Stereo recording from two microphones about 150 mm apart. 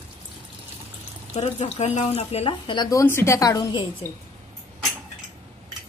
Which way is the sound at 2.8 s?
20° left (ahead or behind).